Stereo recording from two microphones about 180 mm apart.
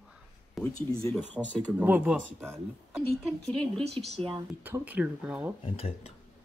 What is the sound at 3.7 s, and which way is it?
Speech, 35° right (ahead or behind).